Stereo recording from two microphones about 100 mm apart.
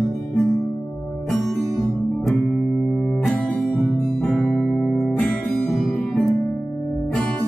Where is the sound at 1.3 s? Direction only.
Centre (ahead or behind).